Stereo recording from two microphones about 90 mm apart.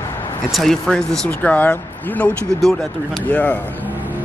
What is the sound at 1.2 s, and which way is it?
Speech, 15° left (ahead or behind).